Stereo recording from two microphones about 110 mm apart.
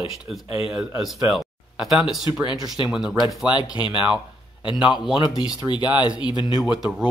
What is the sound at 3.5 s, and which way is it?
Speech, 45° left (ahead or behind).